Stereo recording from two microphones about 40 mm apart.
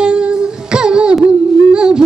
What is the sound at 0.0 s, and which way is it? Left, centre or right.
Child singing, right.